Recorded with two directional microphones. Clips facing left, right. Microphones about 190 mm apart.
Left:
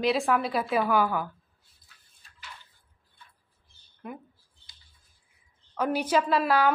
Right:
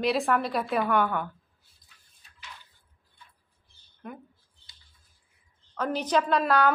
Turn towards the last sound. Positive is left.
turn(degrees=0)  # may be behind; listen again after turning